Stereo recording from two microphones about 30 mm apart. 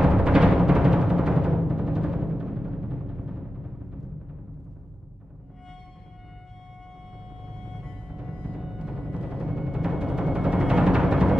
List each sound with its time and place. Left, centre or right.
0.2 s timpani: right
0.9 s music: right
7.4 s music: centre
9.1 s music: right
10.3 s music: right